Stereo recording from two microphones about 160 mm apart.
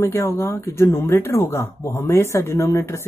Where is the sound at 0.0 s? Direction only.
15° left (ahead or behind).